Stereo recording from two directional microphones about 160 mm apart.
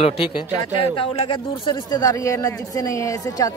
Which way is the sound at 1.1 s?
30° left (ahead or behind).